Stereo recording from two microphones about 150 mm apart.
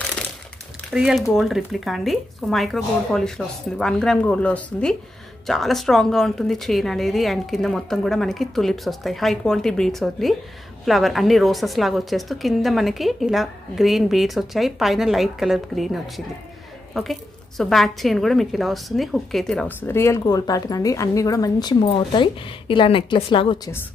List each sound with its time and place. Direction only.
0.9 s a woman's voice: 5° right (ahead or behind); by 23.7 s 35° left (ahead or behind)